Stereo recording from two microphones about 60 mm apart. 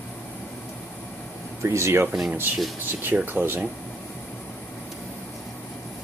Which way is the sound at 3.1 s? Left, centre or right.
Right.